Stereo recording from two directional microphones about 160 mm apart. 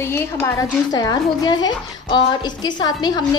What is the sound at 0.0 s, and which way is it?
Speech, 15° left (ahead or behind).